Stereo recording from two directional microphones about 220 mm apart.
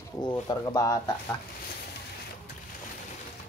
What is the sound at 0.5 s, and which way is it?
Speech, 15° left (ahead or behind).